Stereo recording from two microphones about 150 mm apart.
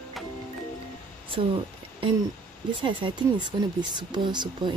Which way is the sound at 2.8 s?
35° right (ahead or behind).